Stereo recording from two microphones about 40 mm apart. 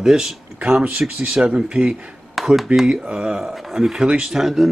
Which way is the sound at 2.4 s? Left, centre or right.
Centre.